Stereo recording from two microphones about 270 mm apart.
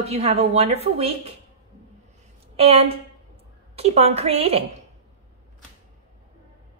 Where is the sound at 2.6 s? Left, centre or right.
Right.